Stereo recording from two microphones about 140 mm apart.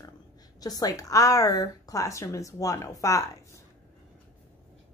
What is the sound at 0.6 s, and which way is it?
Speech, 25° left (ahead or behind).